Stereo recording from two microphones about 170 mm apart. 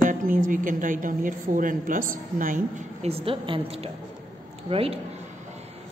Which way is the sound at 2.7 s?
40° right (ahead or behind).